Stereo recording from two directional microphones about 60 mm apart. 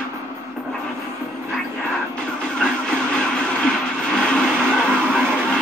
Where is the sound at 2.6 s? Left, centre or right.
Centre.